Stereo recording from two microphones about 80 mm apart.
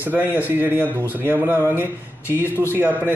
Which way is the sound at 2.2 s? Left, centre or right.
Left.